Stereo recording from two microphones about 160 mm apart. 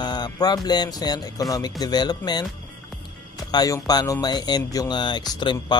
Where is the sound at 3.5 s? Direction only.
25° left (ahead or behind).